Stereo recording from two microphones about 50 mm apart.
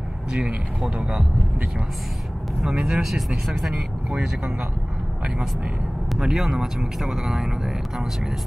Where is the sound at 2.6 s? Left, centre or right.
Centre.